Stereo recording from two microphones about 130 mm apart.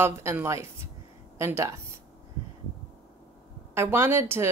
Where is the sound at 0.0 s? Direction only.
20° right (ahead or behind).